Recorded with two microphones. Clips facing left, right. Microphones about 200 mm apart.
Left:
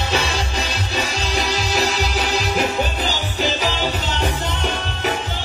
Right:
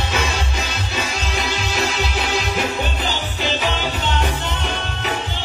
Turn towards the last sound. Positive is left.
turn(degrees=40)  # may be behind; listen again after turning